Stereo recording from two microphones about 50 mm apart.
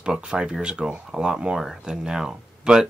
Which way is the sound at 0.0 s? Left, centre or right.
Centre.